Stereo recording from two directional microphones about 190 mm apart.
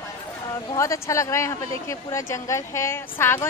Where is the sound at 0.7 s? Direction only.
15° left (ahead or behind).